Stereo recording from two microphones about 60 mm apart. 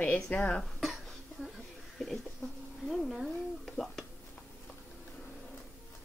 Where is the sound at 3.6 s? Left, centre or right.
Centre.